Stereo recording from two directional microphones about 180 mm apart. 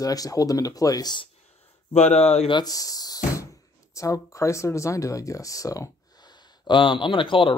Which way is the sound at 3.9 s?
15° left (ahead or behind).